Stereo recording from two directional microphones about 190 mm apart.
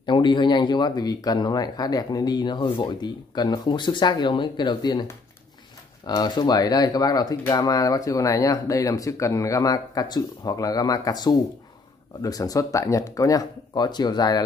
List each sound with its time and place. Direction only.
0.0 s speech: 25° left (ahead or behind)